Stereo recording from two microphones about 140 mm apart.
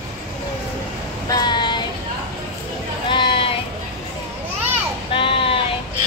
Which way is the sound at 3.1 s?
35° left (ahead or behind).